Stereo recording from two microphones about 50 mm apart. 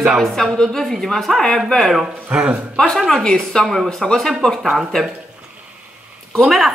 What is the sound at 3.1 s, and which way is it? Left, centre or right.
Speech, centre.